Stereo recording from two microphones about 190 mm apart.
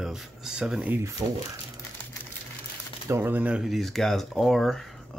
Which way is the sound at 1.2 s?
20° right (ahead or behind).